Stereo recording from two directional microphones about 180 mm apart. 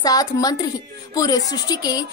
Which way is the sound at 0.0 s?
20° left (ahead or behind).